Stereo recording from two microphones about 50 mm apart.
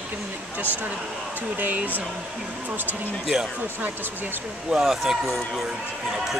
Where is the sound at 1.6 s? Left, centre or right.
Right.